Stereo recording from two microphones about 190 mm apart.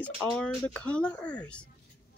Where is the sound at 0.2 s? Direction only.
Centre (ahead or behind).